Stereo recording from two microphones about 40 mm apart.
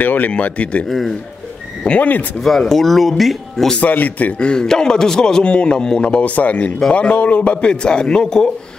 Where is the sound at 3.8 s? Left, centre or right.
Left.